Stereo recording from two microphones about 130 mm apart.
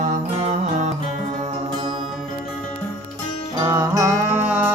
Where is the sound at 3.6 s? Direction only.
25° right (ahead or behind).